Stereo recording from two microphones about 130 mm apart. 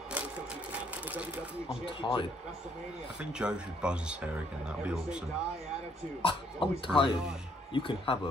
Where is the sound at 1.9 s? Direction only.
40° left (ahead or behind).